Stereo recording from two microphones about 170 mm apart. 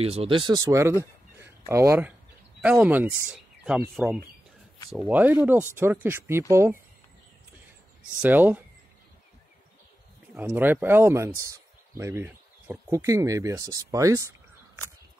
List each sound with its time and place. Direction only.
0.0 s speech: 35° right (ahead or behind); by 6.8 s 15° right (ahead or behind)
8.2 s speech: 10° right (ahead or behind)
10.3 s speech: 10° right (ahead or behind)